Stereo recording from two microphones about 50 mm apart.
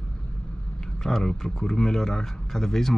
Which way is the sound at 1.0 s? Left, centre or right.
Centre.